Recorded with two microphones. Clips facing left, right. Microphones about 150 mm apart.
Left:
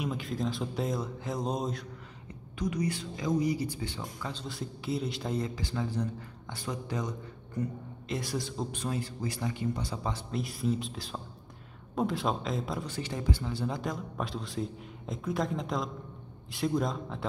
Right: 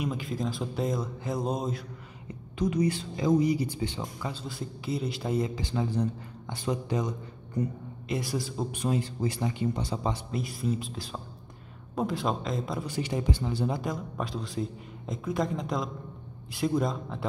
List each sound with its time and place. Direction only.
0.0 s a man's voice: centre (ahead or behind)
2.6 s speech: 25° right (ahead or behind)
4.3 s a man's voice: 5° right (ahead or behind)
5.6 s speech: 20° right (ahead or behind)
8.1 s a man's voice: 5° right (ahead or behind)
8.8 s speech: 20° right (ahead or behind)
10.3 s a man's voice: centre (ahead or behind)
12.8 s speech: 15° right (ahead or behind)
13.7 s a man's voice: centre (ahead or behind)